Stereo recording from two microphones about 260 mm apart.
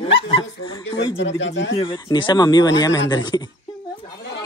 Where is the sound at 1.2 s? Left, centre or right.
Left.